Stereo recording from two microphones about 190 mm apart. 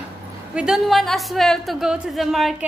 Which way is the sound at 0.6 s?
Centre (ahead or behind).